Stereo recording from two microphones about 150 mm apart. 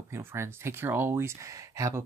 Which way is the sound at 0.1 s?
15° right (ahead or behind).